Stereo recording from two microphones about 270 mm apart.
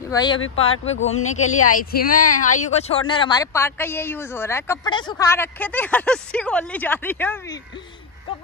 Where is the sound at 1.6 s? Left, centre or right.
Left.